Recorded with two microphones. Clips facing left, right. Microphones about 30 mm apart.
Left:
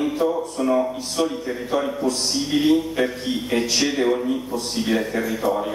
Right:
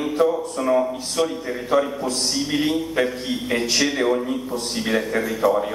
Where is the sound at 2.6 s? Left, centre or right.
Centre.